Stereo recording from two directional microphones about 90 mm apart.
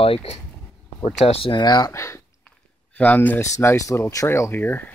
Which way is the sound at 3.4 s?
30° left (ahead or behind).